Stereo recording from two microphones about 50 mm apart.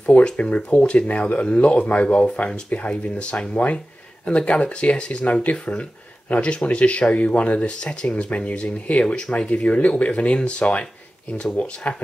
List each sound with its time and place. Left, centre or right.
0.0 s speech: left